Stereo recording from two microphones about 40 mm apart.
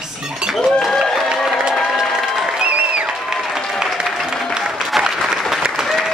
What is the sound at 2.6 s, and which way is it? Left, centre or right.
Applause, right.